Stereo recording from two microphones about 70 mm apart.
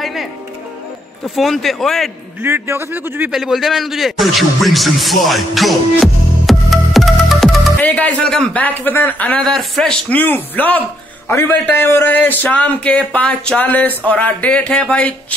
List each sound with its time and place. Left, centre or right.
0.0 s music: centre
1.2 s speech: centre
2.4 s a man's voice: right
3.3 s a man's voice: centre
7.8 s a sound: left
8.5 s speech: left
9.4 s speech: centre
10.0 s speech: left
11.2 s a man's voice: left; by 13.6 s centre
13.6 s speech: left